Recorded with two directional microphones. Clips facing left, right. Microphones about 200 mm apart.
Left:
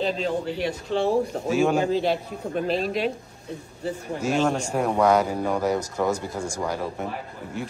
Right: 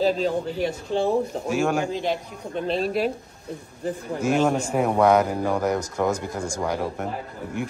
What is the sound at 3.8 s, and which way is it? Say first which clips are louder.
Speech: right 2 dB; 55° right (ahead or behind).